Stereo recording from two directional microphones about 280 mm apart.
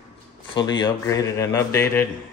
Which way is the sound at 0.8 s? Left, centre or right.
Centre.